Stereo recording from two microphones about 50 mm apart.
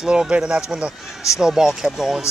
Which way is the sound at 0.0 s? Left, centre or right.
Centre.